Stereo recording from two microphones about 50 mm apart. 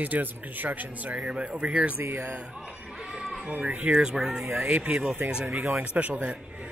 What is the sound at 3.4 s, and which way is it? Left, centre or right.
Speech, right.